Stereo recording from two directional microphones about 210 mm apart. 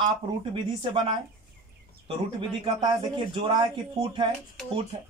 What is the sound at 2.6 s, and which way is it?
Speech, 25° right (ahead or behind).